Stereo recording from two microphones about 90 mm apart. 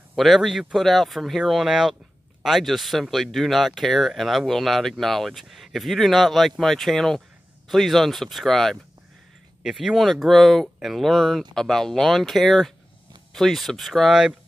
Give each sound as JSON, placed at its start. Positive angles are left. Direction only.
{"t": 0.1, "sound": "speech", "side_deg": 0}